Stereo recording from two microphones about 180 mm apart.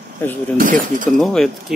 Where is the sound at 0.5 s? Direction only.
50° right (ahead or behind).